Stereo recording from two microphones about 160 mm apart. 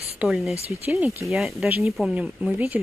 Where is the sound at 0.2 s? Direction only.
5° right (ahead or behind).